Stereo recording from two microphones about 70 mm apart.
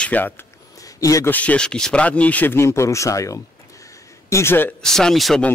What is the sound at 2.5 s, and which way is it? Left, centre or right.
Speech, left.